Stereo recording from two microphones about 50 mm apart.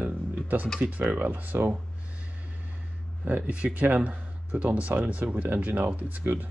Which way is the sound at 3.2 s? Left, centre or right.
Right.